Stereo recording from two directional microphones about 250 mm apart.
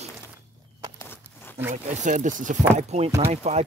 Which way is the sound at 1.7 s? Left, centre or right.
Right.